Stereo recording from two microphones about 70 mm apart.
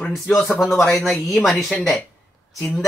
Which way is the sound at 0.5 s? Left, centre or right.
Centre.